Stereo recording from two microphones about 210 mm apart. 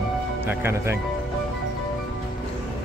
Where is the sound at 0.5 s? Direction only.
10° right (ahead or behind).